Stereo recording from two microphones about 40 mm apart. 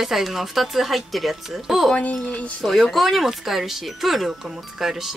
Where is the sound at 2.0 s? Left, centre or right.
Left.